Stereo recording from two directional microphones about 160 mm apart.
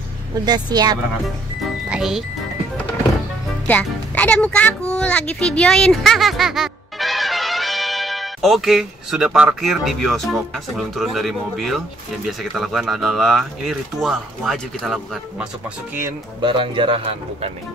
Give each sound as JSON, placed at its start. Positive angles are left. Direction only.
{"t": 0.5, "sound": "speech", "side_deg": -25}
{"t": 1.9, "sound": "music", "side_deg": -5}
{"t": 3.6, "sound": "speech", "side_deg": 10}
{"t": 16.3, "sound": "speech", "side_deg": -30}